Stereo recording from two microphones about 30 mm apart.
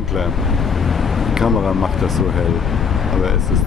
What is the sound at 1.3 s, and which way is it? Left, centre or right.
Speech, centre.